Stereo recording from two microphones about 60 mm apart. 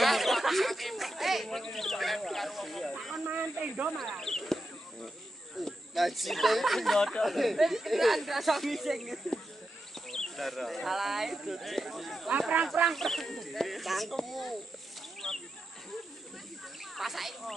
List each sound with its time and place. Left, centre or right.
0.0 s a sound: centre
3.3 s snake: right
4.0 s speech: centre
5.6 s speech: centre
12.3 s speech: right
12.9 s speech: centre
15.2 s a sound: centre
16.9 s speech: centre